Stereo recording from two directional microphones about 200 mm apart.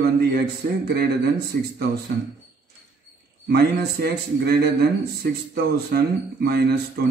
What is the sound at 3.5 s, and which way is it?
A man's voice, 50° right (ahead or behind).